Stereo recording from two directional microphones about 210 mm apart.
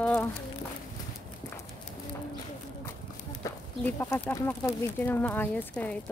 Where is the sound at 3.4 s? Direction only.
10° left (ahead or behind).